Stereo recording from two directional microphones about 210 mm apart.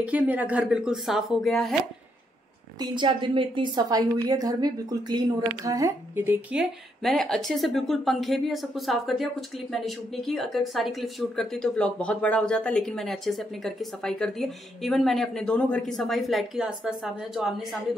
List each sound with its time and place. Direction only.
0.0 s speech: 5° right (ahead or behind)
2.8 s a woman's voice: 20° right (ahead or behind)
7.0 s speech: centre (ahead or behind)